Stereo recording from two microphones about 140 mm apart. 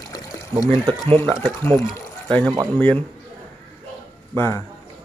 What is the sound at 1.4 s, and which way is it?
Speech, 15° left (ahead or behind).